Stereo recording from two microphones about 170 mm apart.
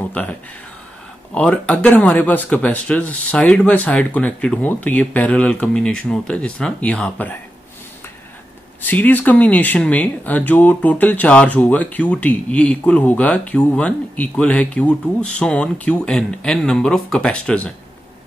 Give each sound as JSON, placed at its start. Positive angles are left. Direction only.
{"t": 0.1, "sound": "speech", "side_deg": 10}
{"t": 8.8, "sound": "speech", "side_deg": 10}